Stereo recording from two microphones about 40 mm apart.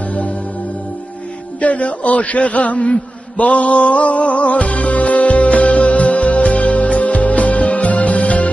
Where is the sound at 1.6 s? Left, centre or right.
Left.